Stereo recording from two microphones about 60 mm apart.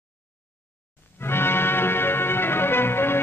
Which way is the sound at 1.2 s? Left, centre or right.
Left.